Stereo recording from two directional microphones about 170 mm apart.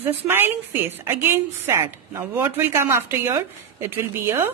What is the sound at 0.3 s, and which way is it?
A woman's voice, 15° right (ahead or behind).